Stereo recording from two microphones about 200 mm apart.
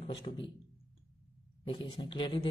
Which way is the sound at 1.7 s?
25° left (ahead or behind).